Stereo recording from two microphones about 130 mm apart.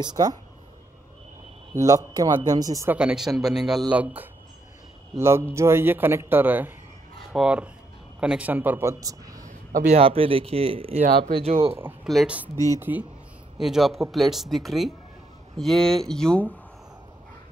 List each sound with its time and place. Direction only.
0.0 s speech: 30° right (ahead or behind)
1.7 s speech: 25° right (ahead or behind)
2.9 s speech: 10° right (ahead or behind)
9.0 s speech: 25° right (ahead or behind)
9.4 s a sound: 85° right
9.9 s speech: 45° right (ahead or behind)
12.1 s speech: 5° right (ahead or behind)
12.7 s speech: 15° right (ahead or behind)
13.6 s speech: centre (ahead or behind)